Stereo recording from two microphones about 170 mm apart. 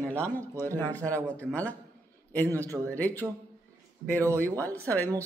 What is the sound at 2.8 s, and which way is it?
A man's voice, 10° left (ahead or behind).